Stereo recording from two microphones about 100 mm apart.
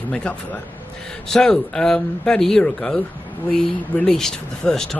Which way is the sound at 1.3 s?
5° left (ahead or behind).